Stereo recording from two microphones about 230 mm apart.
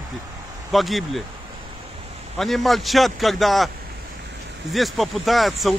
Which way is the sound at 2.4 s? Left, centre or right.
Centre.